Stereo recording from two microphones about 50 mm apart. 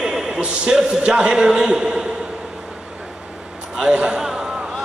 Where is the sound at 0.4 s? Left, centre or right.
Centre.